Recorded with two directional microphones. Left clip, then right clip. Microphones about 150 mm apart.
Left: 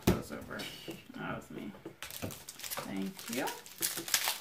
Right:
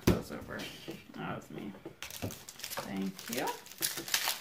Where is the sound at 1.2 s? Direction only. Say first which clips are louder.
Even; 40° right (ahead or behind).